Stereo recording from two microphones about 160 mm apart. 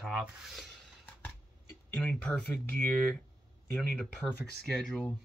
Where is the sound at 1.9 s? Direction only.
5° left (ahead or behind).